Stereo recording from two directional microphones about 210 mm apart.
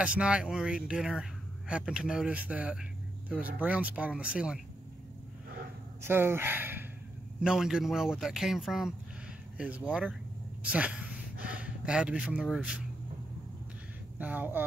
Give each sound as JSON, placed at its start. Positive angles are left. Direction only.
{"t": 0.0, "sound": "speech", "side_deg": -5}
{"t": 6.0, "sound": "speech", "side_deg": -10}
{"t": 14.1, "sound": "speech", "side_deg": -10}